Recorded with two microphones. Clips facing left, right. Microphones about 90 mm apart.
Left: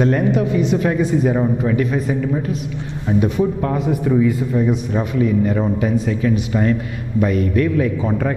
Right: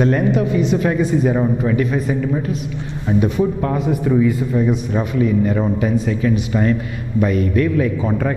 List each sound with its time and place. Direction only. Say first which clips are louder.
0.0 s speech: even; 15° right (ahead or behind)